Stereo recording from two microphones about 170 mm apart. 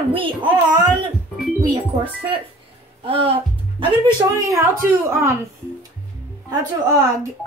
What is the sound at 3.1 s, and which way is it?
Speech, 35° right (ahead or behind).